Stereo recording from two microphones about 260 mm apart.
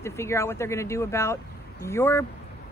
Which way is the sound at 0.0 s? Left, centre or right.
Centre.